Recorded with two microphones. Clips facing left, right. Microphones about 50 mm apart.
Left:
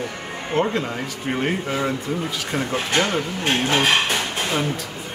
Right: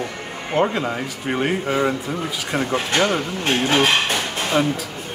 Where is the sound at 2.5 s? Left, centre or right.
Right.